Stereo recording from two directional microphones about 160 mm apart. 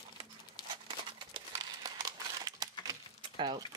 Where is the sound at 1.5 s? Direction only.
25° right (ahead or behind).